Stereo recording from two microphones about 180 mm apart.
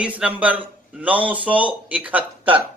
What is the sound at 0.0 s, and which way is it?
A man's voice, 5° right (ahead or behind).